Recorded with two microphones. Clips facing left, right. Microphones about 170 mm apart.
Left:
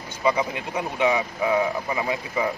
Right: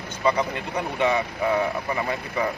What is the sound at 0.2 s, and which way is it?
Speech, 20° left (ahead or behind).